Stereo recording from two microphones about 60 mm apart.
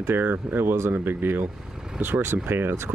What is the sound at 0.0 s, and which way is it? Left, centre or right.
Speech, right.